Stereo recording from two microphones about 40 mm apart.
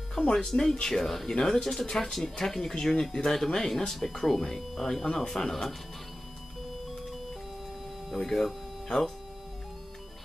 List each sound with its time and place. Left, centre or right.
0.5 s speech: centre
8.1 s speech: centre